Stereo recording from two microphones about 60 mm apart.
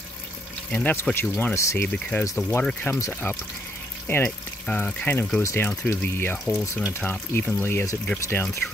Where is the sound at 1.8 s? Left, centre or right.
Left.